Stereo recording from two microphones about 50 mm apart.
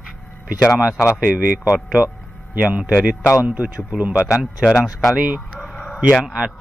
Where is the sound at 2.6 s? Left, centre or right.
Right.